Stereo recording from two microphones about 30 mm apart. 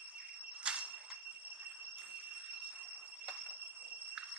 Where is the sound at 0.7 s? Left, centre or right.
Right.